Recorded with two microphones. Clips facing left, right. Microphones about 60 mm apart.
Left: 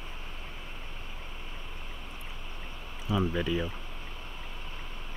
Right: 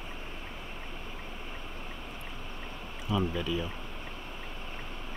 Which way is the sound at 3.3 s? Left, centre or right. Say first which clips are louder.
Left 2 dB; left.